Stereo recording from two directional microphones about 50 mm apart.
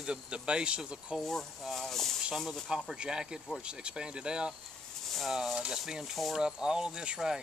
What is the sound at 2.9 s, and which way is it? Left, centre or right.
Speech, centre.